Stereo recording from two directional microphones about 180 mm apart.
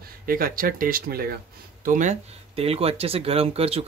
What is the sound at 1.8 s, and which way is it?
Speech, 45° right (ahead or behind).